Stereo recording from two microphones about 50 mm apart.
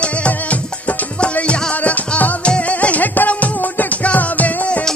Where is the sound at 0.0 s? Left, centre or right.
Left.